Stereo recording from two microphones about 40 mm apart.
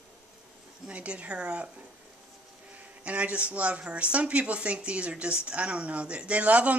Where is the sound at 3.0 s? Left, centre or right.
Right.